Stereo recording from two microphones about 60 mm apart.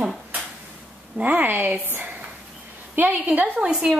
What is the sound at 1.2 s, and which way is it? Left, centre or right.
A woman's voice, right.